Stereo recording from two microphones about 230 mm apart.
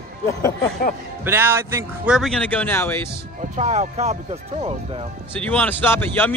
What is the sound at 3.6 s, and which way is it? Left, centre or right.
Speech, right.